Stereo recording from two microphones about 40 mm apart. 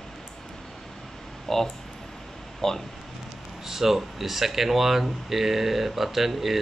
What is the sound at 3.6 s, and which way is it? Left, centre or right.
Speech, centre.